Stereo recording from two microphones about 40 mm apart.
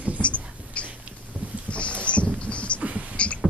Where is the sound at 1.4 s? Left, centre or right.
Right.